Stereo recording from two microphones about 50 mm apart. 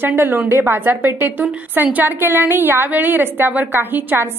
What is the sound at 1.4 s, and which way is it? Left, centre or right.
Speech, right.